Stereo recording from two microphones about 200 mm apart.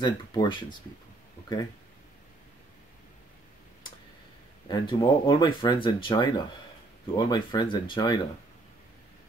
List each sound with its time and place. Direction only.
0.0 s speech: 20° left (ahead or behind)
4.6 s speech: 25° left (ahead or behind)